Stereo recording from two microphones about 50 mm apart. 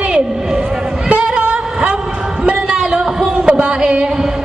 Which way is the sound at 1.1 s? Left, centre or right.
Right.